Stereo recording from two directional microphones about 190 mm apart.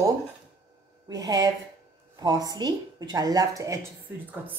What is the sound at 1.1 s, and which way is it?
A woman's voice, 20° right (ahead or behind).